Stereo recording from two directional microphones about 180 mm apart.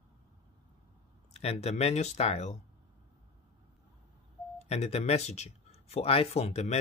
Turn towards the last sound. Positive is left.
turn(degrees=35)  # may be behind; listen again after turning